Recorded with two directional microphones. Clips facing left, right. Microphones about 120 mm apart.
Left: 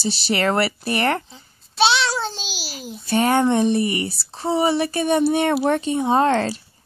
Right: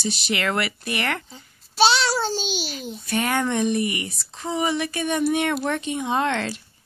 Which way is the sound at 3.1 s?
30° left (ahead or behind).